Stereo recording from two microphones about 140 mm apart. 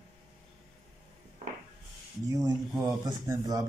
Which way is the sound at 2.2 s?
25° right (ahead or behind).